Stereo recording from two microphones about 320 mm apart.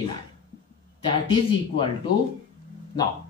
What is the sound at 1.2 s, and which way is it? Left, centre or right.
Speech, centre.